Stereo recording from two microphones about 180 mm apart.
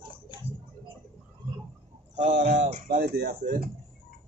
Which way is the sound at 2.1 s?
40° right (ahead or behind).